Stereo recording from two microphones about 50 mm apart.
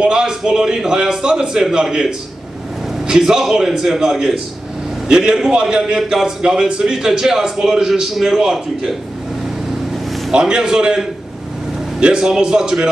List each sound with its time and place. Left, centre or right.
0.0 s a man's voice: centre
5.0 s a man's voice: centre
10.3 s a man's voice: centre